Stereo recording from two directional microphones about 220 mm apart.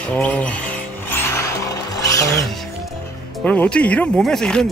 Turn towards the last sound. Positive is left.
turn(degrees=5)  # may be behind; listen again after turning